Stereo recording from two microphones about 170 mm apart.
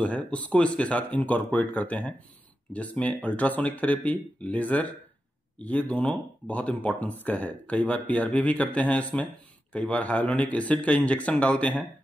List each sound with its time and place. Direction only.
0.0 s speech: 5° left (ahead or behind)